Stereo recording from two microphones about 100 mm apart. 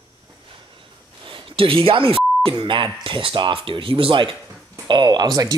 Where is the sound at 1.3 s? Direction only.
60° right (ahead or behind).